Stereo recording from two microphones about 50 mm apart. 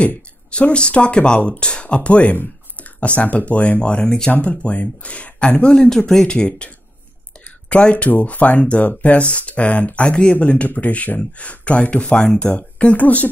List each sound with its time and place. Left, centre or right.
0.5 s speech: left
12.5 s speech: left